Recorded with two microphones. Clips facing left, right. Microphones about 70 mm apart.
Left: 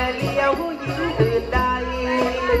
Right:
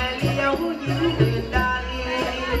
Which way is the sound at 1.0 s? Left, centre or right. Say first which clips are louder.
Left 3 dB; left.